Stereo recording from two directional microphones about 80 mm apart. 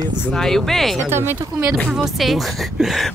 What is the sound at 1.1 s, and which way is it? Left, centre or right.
Speech, right.